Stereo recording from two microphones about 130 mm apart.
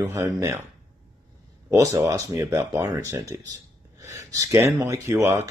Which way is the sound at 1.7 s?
20° right (ahead or behind).